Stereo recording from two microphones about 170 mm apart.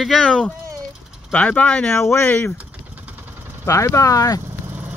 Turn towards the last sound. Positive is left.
turn(degrees=20)  # may be behind; listen again after turning